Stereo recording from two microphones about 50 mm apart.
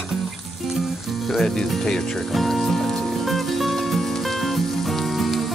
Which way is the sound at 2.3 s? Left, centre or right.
Centre.